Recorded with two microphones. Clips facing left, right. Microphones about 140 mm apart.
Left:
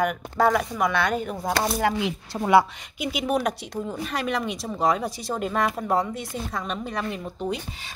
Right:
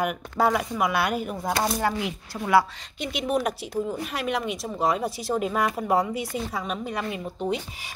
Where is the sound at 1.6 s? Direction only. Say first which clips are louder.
Left 2 dB; 15° left (ahead or behind).